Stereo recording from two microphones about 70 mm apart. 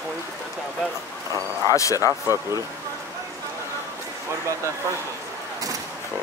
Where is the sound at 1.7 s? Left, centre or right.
Left.